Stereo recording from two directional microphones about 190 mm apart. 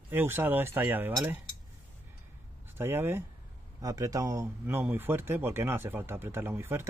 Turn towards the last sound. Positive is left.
turn(degrees=-15)  # may be behind; listen again after turning